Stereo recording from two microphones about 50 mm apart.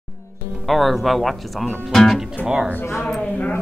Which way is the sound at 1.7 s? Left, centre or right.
Centre.